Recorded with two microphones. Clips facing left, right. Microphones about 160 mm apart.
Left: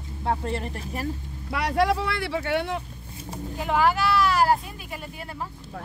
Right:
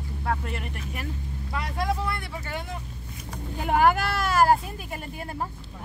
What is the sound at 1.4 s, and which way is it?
Speech, 80° left.